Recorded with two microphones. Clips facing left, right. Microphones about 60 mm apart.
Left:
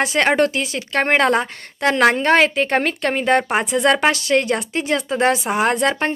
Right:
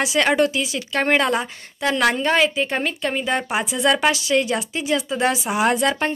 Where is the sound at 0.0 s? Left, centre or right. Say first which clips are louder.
Left 2 dB; left.